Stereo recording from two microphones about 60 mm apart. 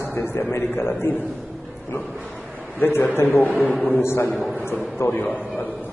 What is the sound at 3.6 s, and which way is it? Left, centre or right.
Speech, left.